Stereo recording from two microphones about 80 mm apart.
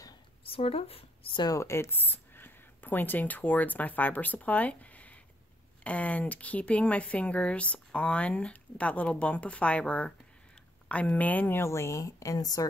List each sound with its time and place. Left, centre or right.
1.5 s a woman's voice: left